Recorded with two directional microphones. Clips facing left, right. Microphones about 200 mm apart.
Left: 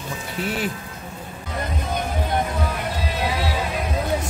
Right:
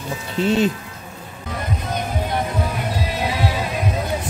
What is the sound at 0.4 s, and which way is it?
Speech, 25° right (ahead or behind).